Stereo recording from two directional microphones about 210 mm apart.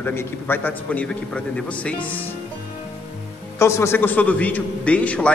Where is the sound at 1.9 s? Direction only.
25° left (ahead or behind).